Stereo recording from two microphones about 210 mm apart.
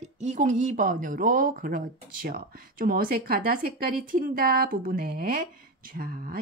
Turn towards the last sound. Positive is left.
turn(degrees=-45)  # may be behind; listen again after turning